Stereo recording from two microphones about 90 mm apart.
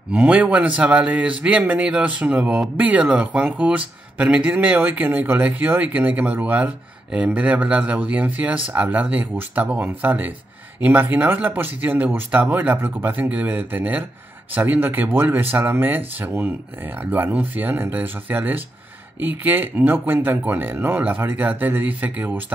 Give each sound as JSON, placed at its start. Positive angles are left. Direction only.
{"t": 0.1, "sound": "speech", "side_deg": -15}